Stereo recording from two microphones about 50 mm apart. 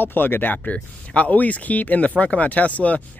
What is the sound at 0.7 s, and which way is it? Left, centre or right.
Speech, left.